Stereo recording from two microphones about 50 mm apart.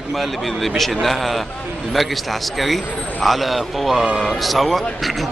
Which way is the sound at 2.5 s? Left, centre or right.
Centre.